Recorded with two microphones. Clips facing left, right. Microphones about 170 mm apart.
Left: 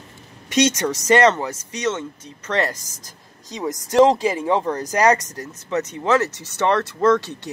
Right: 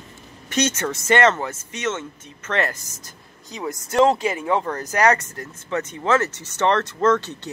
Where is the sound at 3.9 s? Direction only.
20° left (ahead or behind).